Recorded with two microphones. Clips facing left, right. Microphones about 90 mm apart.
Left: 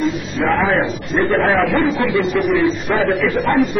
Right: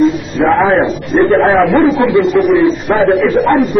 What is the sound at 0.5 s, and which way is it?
A man's voice, 30° right (ahead or behind).